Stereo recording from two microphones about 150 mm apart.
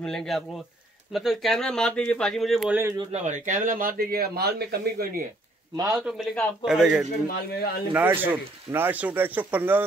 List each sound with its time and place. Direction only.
0.0 s speech: 5° left (ahead or behind)
3.1 s speech: 50° right (ahead or behind); by 5.2 s 90° right
5.9 s speech: 5° right (ahead or behind)
7.2 s speech: 90° left
7.9 s speech: 10° right (ahead or behind)